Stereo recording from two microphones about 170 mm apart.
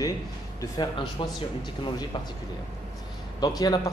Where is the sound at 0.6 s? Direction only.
25° left (ahead or behind).